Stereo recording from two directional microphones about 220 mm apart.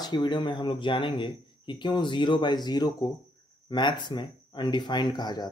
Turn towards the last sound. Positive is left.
turn(degrees=20)  # may be behind; listen again after turning